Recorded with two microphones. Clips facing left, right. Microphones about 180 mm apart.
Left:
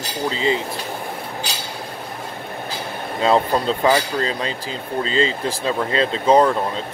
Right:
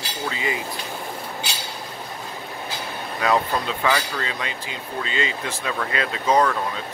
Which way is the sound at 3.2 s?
30° left (ahead or behind).